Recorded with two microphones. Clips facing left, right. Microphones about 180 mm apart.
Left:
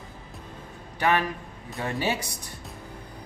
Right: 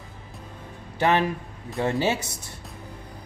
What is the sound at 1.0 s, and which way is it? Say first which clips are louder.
Speech: right 3 dB; 25° right (ahead or behind).